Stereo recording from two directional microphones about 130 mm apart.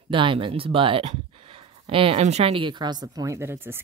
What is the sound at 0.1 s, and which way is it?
Speech, 40° right (ahead or behind).